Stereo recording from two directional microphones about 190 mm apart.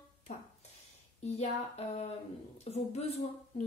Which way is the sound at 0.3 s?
40° left (ahead or behind).